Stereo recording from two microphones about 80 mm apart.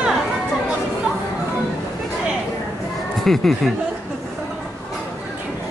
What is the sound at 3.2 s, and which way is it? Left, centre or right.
Speech, centre.